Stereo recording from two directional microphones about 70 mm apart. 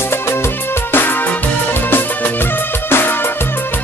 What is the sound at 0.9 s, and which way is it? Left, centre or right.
Music, left.